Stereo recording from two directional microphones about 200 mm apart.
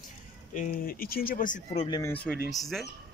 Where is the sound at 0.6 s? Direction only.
45° left (ahead or behind).